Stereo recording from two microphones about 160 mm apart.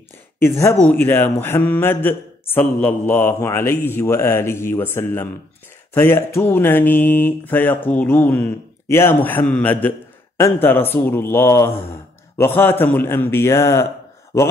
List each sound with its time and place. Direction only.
0.4 s speech: 15° left (ahead or behind)